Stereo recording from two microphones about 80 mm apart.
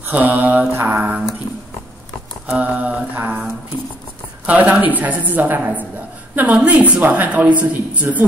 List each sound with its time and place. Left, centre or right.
0.1 s a woman's voice: right
2.5 s mantra: centre
4.5 s a woman's voice: centre